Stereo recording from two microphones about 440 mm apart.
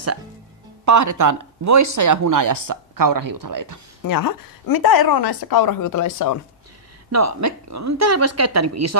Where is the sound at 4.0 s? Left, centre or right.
Left.